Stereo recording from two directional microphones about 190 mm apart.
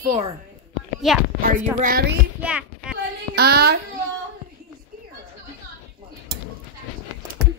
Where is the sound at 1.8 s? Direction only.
50° right (ahead or behind).